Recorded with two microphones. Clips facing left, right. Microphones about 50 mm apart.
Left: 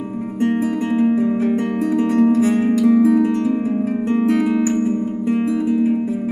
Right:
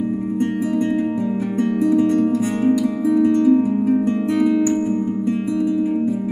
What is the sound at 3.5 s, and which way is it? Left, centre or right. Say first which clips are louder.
Music: right 3 dB; left.